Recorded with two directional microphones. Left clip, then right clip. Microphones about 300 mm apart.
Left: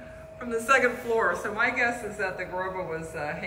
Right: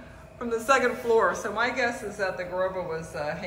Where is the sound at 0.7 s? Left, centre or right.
Centre.